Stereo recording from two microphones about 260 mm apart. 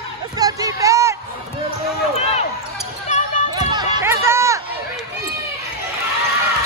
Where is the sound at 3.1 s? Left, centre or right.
Left.